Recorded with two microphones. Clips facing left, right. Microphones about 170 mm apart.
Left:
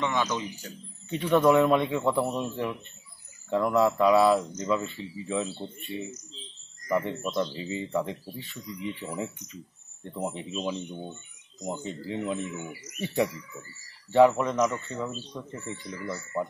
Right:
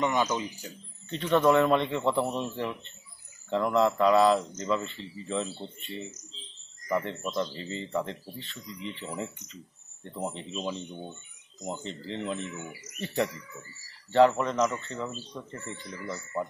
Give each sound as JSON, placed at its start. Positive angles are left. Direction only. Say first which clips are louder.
{"t": 0.0, "sound": "speech", "louder": "right 1 dB", "side_deg": -10}
{"t": 1.1, "sound": "a man's voice", "louder": "left 2 dB", "side_deg": 5}
{"t": 10.6, "sound": "a man's voice", "louder": "left 2 dB", "side_deg": -5}
{"t": 11.6, "sound": "speech", "louder": "left 2 dB", "side_deg": 10}